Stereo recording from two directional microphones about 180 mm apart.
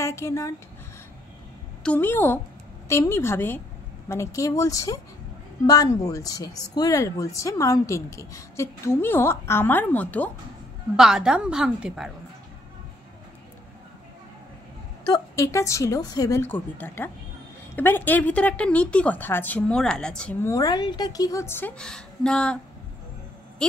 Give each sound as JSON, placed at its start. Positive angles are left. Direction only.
{"t": 0.0, "sound": "speech", "side_deg": 15}
{"t": 1.8, "sound": "speech", "side_deg": 10}
{"t": 11.0, "sound": "a woman's voice", "side_deg": -5}
{"t": 15.0, "sound": "speech", "side_deg": 20}
{"t": 20.4, "sound": "speech", "side_deg": 20}
{"t": 23.6, "sound": "speech", "side_deg": 5}